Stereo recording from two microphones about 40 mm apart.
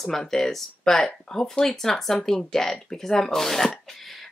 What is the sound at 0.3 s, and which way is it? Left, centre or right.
A woman's voice, centre.